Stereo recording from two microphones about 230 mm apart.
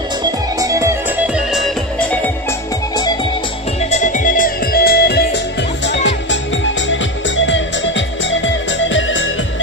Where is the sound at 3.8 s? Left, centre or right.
Left.